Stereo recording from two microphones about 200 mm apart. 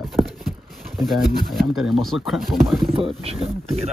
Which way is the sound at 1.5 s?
Centre (ahead or behind).